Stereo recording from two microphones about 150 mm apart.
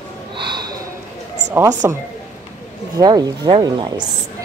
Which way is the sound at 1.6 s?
15° right (ahead or behind).